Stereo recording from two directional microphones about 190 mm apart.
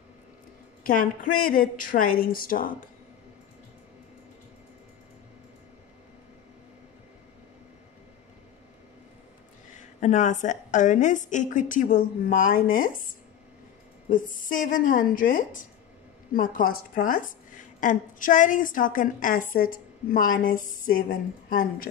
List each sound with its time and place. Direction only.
0.8 s a woman's voice: 45° left (ahead or behind)
9.8 s a woman's voice: 40° left (ahead or behind)
14.0 s a woman's voice: 45° left (ahead or behind)